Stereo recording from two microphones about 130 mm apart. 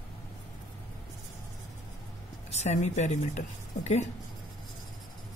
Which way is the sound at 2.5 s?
60° left (ahead or behind).